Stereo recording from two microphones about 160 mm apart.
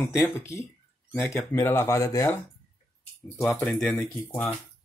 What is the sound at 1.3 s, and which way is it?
Speech, 15° left (ahead or behind).